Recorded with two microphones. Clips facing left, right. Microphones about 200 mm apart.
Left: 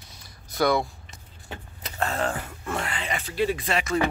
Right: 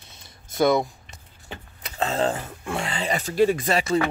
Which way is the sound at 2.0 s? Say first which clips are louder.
Right 4 dB; 25° right (ahead or behind).